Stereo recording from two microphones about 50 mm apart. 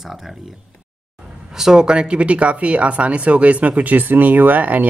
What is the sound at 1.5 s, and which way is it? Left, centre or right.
Speech, centre.